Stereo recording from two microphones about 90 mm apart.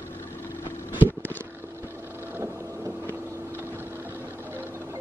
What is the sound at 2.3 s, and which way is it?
Boat, 30° right (ahead or behind).